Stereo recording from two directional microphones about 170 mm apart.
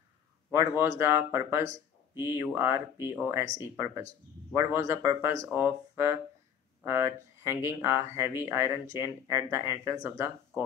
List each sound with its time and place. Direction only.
0.5 s speech: 15° right (ahead or behind)